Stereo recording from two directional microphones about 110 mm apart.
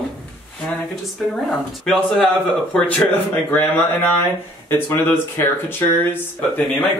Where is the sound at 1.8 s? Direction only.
5° left (ahead or behind).